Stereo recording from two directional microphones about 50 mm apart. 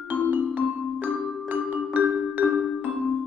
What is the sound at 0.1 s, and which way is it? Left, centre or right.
Music, right.